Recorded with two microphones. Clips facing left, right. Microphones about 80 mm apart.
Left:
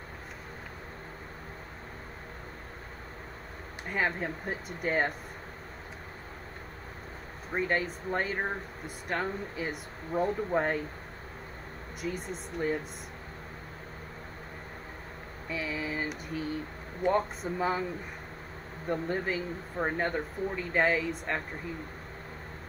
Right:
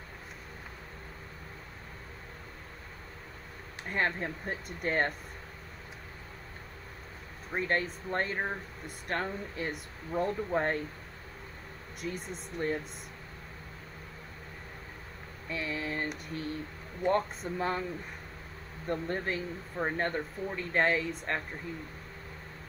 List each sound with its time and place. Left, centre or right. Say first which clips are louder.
3.9 s speech: left 1 dB; centre
7.5 s speech: left 1 dB; centre
12.0 s speech: left 2 dB; centre
15.4 s speech: left 1 dB; centre
18.9 s speech: left 2 dB; centre